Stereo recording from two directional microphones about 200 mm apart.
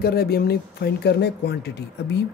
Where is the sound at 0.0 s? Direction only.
50° left (ahead or behind).